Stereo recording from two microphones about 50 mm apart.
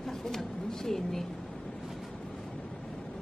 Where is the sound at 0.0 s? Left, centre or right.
Centre.